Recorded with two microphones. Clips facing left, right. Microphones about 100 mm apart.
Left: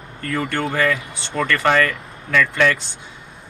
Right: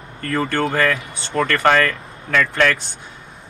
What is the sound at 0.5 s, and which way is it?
Speech, 40° right (ahead or behind).